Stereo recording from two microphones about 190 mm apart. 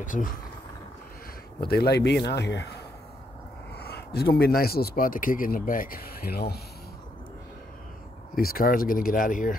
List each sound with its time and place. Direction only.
0.0 s speech: 45° left (ahead or behind)
1.7 s speech: 55° left (ahead or behind)
3.7 s speech: 55° left (ahead or behind)
8.4 s speech: 50° left (ahead or behind)